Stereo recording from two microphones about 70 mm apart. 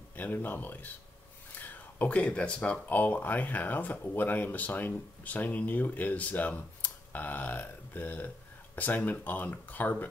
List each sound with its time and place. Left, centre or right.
0.1 s speech: left